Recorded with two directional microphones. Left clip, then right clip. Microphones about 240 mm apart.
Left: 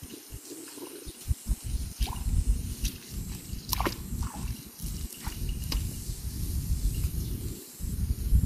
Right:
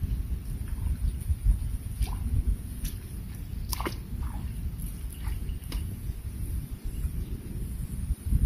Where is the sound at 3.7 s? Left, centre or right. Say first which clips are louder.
Left 4 dB; centre.